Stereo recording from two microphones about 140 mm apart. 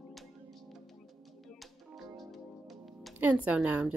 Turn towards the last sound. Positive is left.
turn(degrees=-10)  # may be behind; listen again after turning